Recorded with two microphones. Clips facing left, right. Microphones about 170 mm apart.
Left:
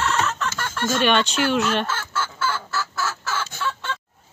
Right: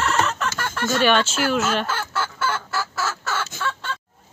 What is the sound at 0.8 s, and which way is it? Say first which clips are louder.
Speech: right 1 dB; 5° right (ahead or behind).